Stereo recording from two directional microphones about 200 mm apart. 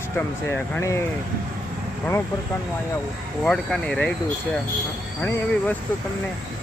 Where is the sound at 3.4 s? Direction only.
5° left (ahead or behind).